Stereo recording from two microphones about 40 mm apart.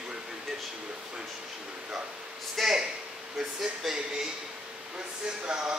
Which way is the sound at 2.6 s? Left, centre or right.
Centre.